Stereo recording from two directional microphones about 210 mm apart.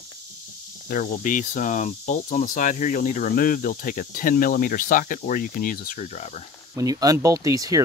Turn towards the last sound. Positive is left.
turn(degrees=-15)  # may be behind; listen again after turning